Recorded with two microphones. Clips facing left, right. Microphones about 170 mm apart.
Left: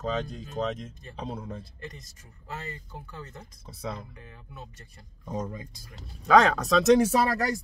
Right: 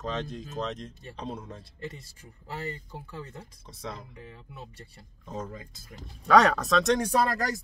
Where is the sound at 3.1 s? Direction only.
30° right (ahead or behind).